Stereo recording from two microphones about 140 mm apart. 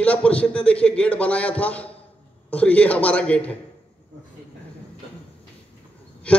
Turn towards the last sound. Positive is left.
turn(degrees=10)  # may be behind; listen again after turning